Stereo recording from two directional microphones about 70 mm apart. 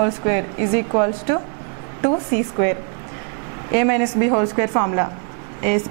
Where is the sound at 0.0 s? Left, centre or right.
Centre.